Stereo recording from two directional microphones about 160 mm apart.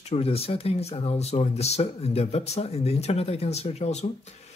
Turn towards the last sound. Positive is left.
turn(degrees=40)  # may be behind; listen again after turning